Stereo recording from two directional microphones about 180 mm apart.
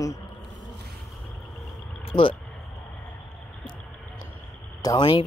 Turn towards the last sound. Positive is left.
turn(degrees=25)  # may be behind; listen again after turning